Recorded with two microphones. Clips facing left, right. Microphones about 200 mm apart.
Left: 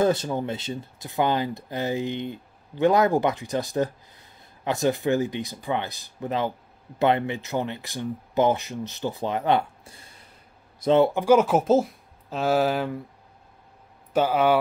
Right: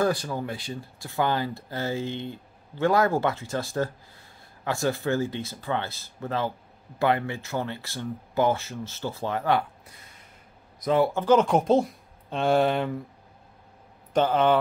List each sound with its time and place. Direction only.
0.0 s speech: 20° left (ahead or behind)
11.1 s speech: 10° left (ahead or behind)
14.1 s speech: 10° left (ahead or behind)